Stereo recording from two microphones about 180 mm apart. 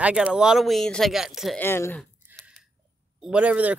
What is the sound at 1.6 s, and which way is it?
Speech, 15° left (ahead or behind).